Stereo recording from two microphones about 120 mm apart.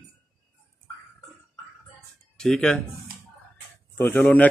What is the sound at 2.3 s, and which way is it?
Speech, 5° left (ahead or behind).